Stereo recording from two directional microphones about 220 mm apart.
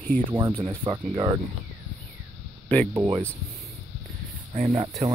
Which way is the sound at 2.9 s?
20° right (ahead or behind).